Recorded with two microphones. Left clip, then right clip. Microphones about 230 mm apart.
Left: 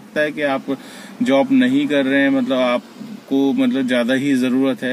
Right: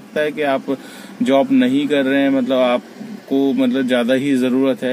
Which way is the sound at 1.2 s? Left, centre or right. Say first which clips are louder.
Right 1 dB; centre.